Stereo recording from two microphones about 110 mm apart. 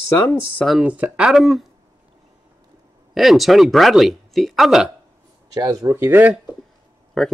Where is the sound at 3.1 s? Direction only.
Centre (ahead or behind).